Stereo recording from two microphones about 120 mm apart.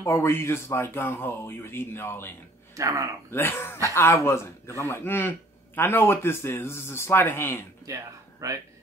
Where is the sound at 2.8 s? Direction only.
25° right (ahead or behind).